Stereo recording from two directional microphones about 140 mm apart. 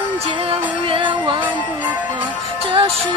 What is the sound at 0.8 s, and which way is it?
Music, 40° right (ahead or behind).